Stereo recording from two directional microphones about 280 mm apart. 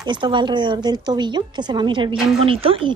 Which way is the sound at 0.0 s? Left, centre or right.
Centre.